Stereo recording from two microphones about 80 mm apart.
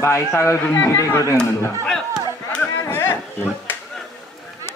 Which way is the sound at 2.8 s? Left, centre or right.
Left.